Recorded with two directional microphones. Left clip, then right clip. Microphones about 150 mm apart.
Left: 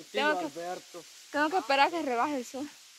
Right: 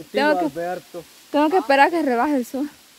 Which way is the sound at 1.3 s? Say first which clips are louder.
Right 10 dB; 30° right (ahead or behind).